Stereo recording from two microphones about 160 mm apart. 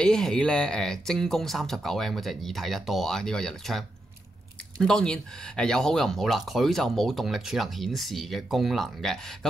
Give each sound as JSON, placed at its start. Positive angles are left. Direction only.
{"t": 0.0, "sound": "speech", "side_deg": 5}